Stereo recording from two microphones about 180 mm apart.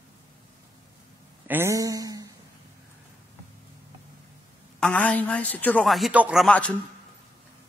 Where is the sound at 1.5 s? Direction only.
15° right (ahead or behind).